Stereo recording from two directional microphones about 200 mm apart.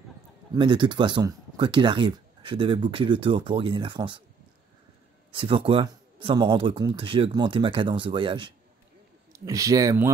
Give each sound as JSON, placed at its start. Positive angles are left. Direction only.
{"t": 0.6, "sound": "speech", "side_deg": -25}
{"t": 5.3, "sound": "speech", "side_deg": -25}